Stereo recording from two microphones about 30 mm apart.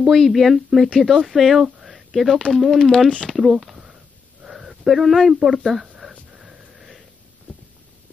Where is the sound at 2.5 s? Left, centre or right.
Centre.